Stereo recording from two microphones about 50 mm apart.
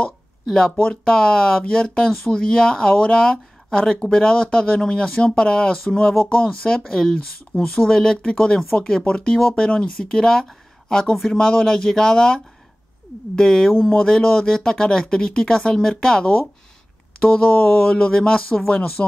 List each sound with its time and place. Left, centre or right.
0.5 s speech: centre
13.4 s speech: centre
18.7 s speech: left